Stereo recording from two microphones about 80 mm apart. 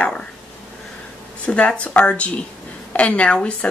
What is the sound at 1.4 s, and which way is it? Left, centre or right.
Speech, centre.